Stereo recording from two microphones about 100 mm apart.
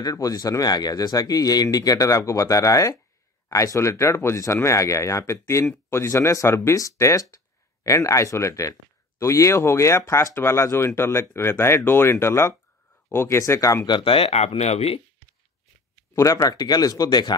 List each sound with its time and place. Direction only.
0.0 s speech: 40° left (ahead or behind)
13.8 s speech: 60° left (ahead or behind); by 15.0 s 90° left
16.2 s speech: 35° left (ahead or behind)